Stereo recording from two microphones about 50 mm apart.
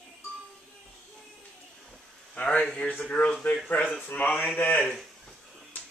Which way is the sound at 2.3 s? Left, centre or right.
Left.